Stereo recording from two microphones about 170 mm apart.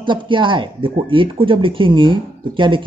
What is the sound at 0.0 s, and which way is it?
Speech, 30° right (ahead or behind).